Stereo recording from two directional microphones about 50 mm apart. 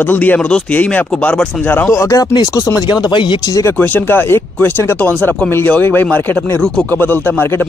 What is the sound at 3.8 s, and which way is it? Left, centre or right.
Speech, left.